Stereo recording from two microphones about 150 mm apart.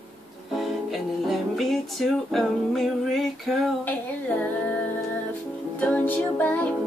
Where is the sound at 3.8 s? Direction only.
10° left (ahead or behind).